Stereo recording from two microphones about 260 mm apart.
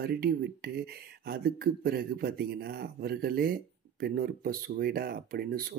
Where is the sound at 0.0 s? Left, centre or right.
Right.